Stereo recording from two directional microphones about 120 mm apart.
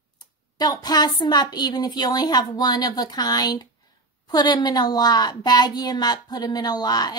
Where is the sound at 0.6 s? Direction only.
35° left (ahead or behind).